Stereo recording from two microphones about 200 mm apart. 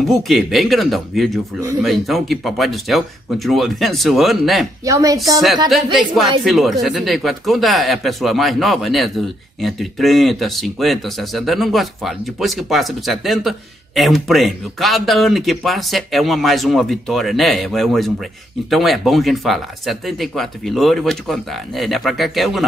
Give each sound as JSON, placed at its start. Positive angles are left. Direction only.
{"t": 0.0, "sound": "speech", "side_deg": 0}
{"t": 4.8, "sound": "speech", "side_deg": -15}
{"t": 6.4, "sound": "speech", "side_deg": 0}